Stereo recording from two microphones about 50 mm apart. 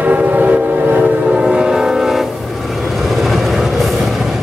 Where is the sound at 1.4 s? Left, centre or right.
Centre.